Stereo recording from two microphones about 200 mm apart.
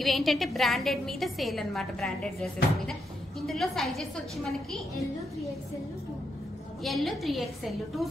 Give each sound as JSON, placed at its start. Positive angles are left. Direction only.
{"t": 0.0, "sound": "a woman's voice", "side_deg": 0}
{"t": 6.8, "sound": "a woman's voice", "side_deg": 0}